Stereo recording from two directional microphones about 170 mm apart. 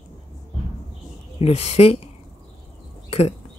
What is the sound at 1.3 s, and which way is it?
Speech, 35° left (ahead or behind).